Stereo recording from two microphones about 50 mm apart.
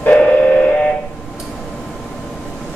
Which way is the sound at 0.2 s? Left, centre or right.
Left.